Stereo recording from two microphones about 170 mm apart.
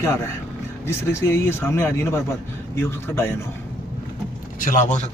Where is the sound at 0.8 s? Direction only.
15° left (ahead or behind).